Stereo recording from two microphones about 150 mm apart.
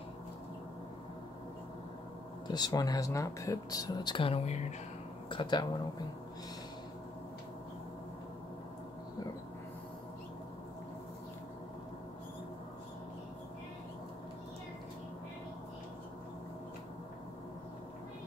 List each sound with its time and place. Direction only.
2.4 s speech: 30° left (ahead or behind); by 4.7 s 50° left (ahead or behind)
5.3 s speech: 30° left (ahead or behind)